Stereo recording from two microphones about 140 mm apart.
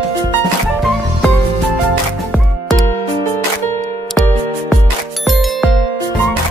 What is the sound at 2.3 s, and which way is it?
Music, centre (ahead or behind).